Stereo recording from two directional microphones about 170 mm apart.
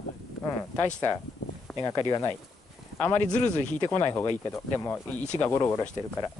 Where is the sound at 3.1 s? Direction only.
10° left (ahead or behind).